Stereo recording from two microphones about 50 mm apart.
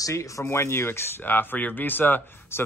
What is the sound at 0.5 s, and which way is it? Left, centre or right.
Speech, left.